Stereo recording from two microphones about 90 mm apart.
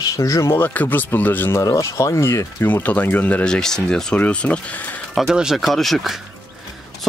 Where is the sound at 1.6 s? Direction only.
35° left (ahead or behind).